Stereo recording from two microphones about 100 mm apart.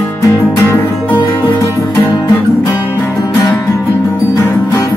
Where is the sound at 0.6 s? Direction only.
30° left (ahead or behind).